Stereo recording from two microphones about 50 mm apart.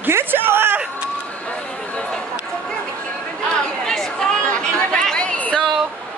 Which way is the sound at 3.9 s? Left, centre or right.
Centre.